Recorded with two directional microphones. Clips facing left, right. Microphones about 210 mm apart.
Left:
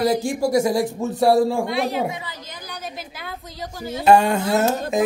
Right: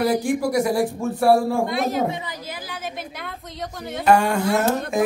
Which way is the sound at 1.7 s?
45° right (ahead or behind).